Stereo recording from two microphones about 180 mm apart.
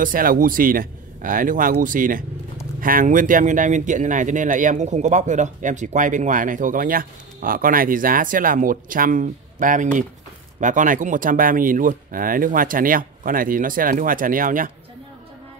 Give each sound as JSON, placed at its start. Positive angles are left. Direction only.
{"t": 0.0, "sound": "speech", "side_deg": -50}